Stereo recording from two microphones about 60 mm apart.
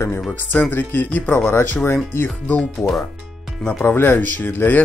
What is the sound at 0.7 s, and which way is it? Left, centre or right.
Speech, left.